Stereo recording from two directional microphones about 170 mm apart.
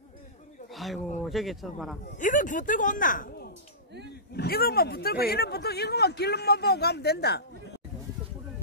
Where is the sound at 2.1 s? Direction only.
50° left (ahead or behind).